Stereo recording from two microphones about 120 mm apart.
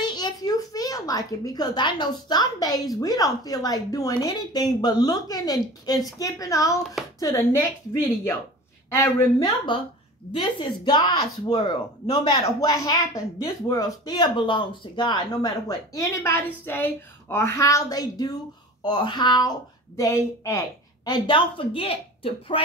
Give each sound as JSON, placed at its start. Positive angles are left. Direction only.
{"t": 0.0, "sound": "a woman's voice", "side_deg": 35}
{"t": 20.0, "sound": "speech", "side_deg": 25}